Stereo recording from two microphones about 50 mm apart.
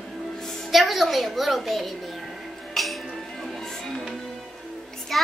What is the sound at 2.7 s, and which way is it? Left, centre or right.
Music, centre.